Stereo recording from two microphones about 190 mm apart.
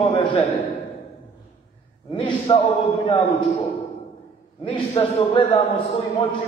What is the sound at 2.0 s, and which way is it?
A man's voice, 25° left (ahead or behind).